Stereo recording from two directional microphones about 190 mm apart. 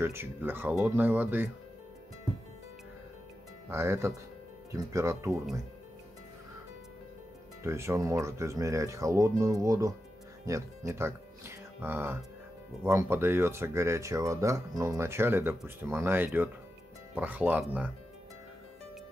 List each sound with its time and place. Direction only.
0.0 s speech: 10° right (ahead or behind)
3.6 s speech: 15° right (ahead or behind)
7.6 s speech: 15° right (ahead or behind)